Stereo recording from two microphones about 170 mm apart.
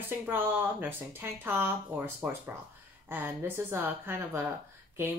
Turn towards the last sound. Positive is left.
turn(degrees=-10)  # may be behind; listen again after turning